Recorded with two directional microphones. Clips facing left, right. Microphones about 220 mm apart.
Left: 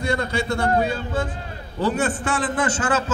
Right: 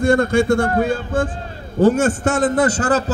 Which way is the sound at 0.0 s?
50° right (ahead or behind).